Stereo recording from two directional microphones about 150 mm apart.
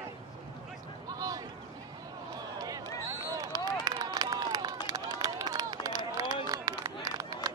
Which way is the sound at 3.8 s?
25° right (ahead or behind).